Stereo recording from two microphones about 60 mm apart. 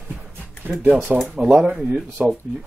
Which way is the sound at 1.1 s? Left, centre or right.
Right.